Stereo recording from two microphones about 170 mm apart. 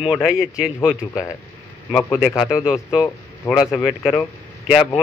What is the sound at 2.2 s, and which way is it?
Speech, centre (ahead or behind).